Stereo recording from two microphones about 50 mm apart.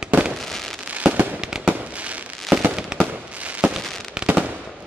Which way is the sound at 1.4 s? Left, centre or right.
Centre.